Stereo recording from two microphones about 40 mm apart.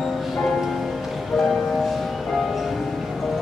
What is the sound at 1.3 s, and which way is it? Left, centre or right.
Music, centre.